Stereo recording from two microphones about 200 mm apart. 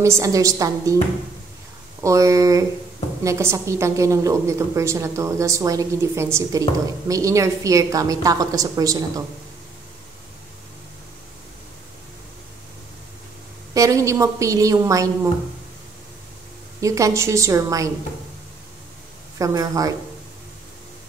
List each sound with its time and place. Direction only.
0.0 s a woman's voice: 15° right (ahead or behind)
2.0 s a woman's voice: 15° right (ahead or behind)
13.7 s a woman's voice: 15° right (ahead or behind)
16.8 s a woman's voice: 15° right (ahead or behind)
19.3 s a woman's voice: 15° right (ahead or behind)